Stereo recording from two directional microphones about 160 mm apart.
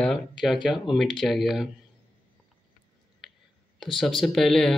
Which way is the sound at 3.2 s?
Centre (ahead or behind).